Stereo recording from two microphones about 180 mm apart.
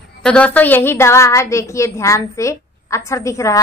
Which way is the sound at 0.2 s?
5° left (ahead or behind).